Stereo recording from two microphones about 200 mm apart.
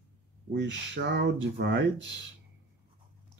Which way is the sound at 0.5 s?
60° right (ahead or behind).